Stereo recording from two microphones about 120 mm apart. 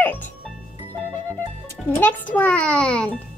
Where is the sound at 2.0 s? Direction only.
15° left (ahead or behind).